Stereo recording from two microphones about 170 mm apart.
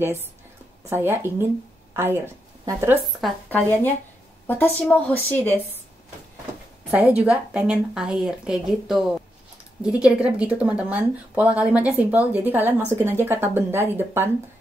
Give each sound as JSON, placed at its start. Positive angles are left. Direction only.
{"t": 0.8, "sound": "a woman's voice", "side_deg": -15}
{"t": 3.4, "sound": "a woman's voice", "side_deg": 10}
{"t": 6.9, "sound": "a woman's voice", "side_deg": -10}